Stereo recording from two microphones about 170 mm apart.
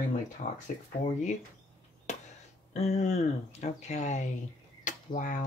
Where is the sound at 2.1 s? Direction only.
45° left (ahead or behind).